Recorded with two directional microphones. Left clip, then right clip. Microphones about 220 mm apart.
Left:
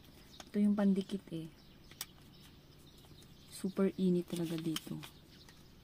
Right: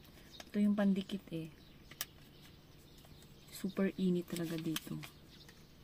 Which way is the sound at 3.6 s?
5° left (ahead or behind).